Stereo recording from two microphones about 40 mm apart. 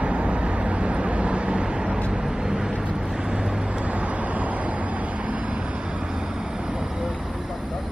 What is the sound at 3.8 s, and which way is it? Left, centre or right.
Vehicle, right.